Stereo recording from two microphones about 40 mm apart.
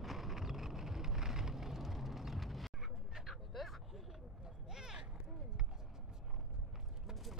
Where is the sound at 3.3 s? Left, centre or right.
Centre.